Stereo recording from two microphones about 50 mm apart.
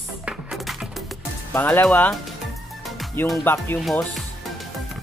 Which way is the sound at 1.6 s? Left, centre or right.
Left.